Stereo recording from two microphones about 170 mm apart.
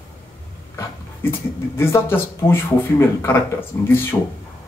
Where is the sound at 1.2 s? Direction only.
15° left (ahead or behind).